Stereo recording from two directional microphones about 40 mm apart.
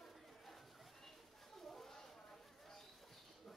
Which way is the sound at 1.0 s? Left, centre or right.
Centre.